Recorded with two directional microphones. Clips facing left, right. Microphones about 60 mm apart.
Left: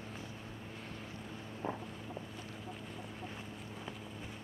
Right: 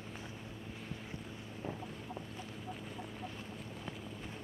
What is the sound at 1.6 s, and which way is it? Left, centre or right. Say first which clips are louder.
Boat: left 4 dB; left.